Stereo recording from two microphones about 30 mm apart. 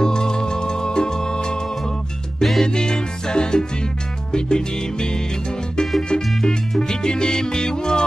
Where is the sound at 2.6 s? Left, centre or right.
Left.